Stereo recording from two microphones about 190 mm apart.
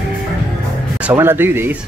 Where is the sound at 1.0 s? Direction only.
10° right (ahead or behind).